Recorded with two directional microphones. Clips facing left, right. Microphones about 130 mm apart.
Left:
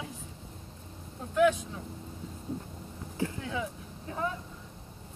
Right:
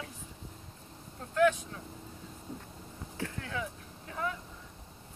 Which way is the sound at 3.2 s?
20° left (ahead or behind).